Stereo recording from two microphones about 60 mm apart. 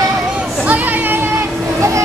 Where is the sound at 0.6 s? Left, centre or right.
Right.